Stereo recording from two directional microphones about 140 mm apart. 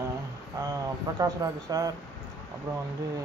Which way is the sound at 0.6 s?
25° right (ahead or behind).